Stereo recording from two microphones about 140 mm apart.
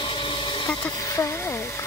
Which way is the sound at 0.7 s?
20° left (ahead or behind).